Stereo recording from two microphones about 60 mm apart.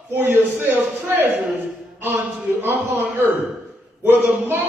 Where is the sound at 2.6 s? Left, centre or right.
Right.